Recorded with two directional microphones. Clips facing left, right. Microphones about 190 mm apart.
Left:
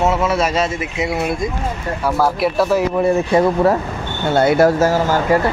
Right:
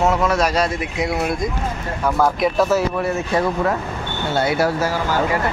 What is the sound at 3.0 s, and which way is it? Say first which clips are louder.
Speech: left 6 dB; 25° left (ahead or behind).